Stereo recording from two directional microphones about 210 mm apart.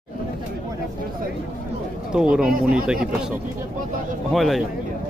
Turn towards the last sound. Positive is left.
turn(degrees=0)  # may be behind; listen again after turning